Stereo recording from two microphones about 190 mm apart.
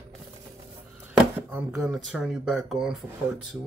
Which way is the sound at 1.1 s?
5° right (ahead or behind).